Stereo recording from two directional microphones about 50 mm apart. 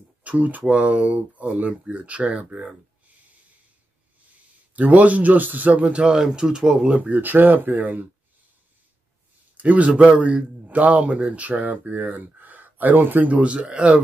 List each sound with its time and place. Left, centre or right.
0.2 s a man's voice: right
4.7 s a man's voice: right
7.0 s speech: right
9.6 s a man's voice: right